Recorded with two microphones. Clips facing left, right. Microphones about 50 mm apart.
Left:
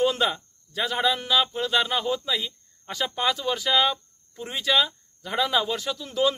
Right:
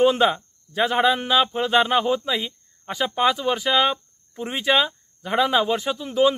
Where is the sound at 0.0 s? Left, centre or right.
Right.